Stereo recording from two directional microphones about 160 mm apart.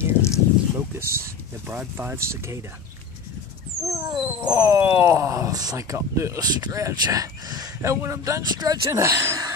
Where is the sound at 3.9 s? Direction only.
20° right (ahead or behind).